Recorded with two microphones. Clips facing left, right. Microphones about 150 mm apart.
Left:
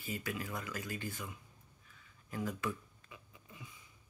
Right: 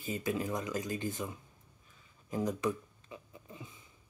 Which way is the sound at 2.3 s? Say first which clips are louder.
Right 6 dB; 20° right (ahead or behind).